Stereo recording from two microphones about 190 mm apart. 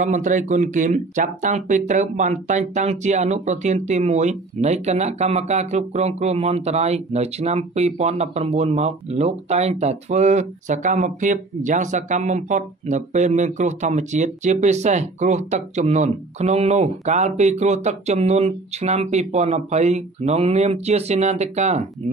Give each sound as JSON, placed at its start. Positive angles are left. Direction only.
{"t": 0.0, "sound": "speech", "side_deg": -40}